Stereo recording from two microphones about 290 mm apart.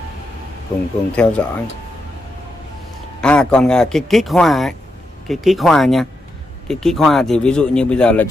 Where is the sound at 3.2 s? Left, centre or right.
Centre.